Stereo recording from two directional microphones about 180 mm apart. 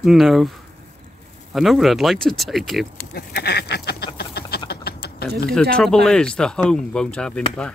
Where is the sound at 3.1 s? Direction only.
65° left (ahead or behind).